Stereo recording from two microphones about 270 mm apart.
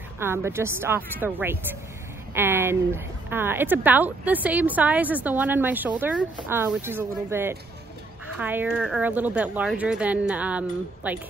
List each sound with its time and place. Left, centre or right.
0.2 s a woman's voice: centre